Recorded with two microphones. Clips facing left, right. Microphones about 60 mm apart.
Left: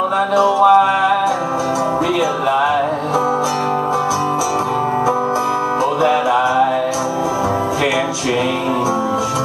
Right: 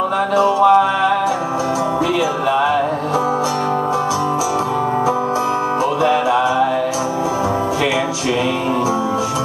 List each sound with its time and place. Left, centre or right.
0.7 s music: left
6.0 s music: left